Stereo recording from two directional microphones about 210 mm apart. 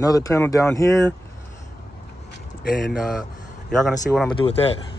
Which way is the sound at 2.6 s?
40° left (ahead or behind).